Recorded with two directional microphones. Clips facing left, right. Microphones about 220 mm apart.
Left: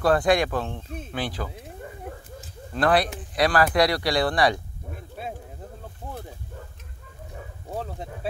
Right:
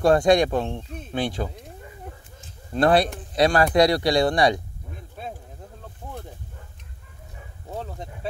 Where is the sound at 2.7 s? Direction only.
25° right (ahead or behind).